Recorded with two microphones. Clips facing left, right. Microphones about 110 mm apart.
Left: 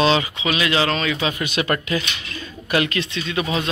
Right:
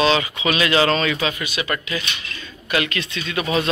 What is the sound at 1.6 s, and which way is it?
Speech, 40° left (ahead or behind).